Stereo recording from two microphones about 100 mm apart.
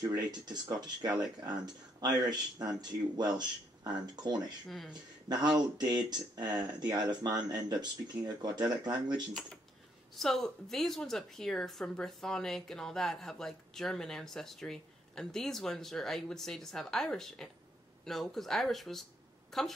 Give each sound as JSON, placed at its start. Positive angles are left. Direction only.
{"t": 0.3, "sound": "speech", "side_deg": -45}
{"t": 10.1, "sound": "speech", "side_deg": 5}